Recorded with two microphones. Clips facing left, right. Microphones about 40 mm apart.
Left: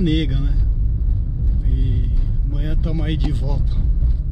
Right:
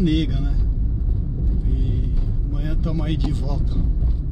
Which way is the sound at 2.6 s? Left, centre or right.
Centre.